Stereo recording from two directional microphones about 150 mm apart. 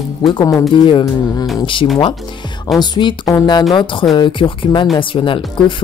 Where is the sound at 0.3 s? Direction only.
30° left (ahead or behind).